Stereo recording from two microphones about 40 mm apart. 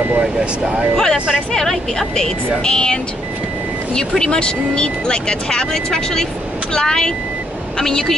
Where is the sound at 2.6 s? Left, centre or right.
Left.